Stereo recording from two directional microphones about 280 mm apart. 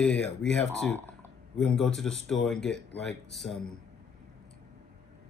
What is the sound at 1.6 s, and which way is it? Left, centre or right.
A woman's voice, centre.